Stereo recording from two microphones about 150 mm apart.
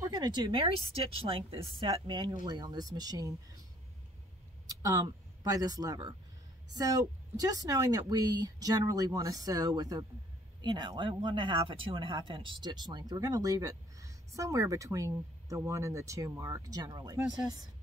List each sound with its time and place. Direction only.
0.1 s a woman's voice: 30° right (ahead or behind)
4.6 s speech: 25° right (ahead or behind)